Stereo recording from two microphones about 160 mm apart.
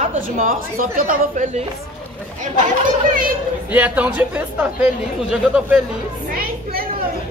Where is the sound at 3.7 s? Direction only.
10° right (ahead or behind).